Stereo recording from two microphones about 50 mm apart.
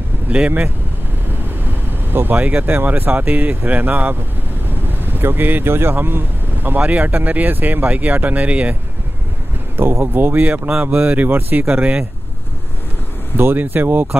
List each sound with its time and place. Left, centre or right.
1.9 s vehicle: right
2.3 s speech: right
6.8 s speech: right
9.8 s speech: right
11.7 s speech: right
13.6 s speech: right